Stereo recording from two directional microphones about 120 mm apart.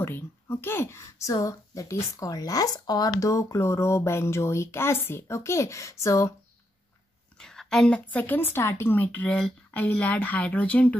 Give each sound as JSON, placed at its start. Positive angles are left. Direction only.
{"t": 0.0, "sound": "a woman's voice", "side_deg": 20}
{"t": 7.3, "sound": "a woman's voice", "side_deg": 5}